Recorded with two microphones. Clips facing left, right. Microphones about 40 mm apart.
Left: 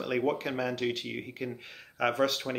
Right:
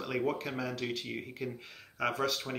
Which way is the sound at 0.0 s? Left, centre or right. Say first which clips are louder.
Left 4 dB; left.